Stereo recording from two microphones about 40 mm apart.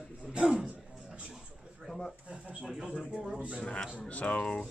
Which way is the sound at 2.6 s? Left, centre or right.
Centre.